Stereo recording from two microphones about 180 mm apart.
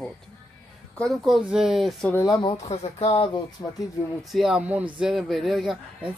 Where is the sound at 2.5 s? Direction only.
35° left (ahead or behind).